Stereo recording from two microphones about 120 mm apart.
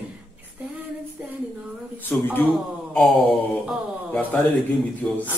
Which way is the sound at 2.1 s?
15° left (ahead or behind).